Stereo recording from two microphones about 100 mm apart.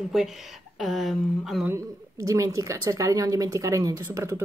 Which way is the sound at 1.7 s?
30° right (ahead or behind).